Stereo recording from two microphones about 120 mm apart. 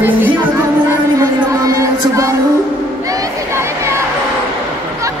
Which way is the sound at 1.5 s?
30° right (ahead or behind).